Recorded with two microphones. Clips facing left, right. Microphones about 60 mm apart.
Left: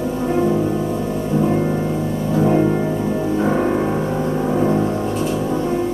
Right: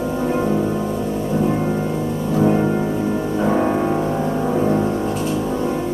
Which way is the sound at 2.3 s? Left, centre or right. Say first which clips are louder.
Left 1 dB; centre.